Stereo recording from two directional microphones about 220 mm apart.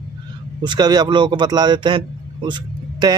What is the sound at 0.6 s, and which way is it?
A man's voice, 20° right (ahead or behind).